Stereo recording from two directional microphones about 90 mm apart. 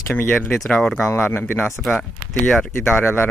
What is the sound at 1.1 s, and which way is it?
Speech, 25° left (ahead or behind).